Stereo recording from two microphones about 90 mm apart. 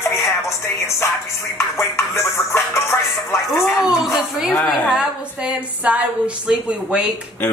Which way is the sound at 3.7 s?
5° right (ahead or behind).